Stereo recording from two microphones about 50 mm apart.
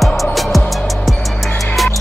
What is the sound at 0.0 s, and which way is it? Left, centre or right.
Music, centre.